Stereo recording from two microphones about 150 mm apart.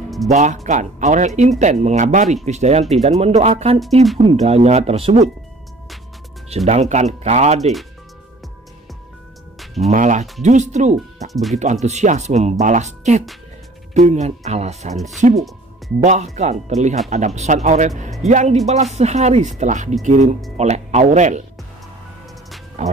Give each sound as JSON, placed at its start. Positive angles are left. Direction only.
{"t": 0.3, "sound": "speech", "side_deg": -50}
{"t": 6.5, "sound": "speech", "side_deg": -50}
{"t": 9.8, "sound": "speech", "side_deg": -55}
{"t": 22.8, "sound": "speech", "side_deg": -50}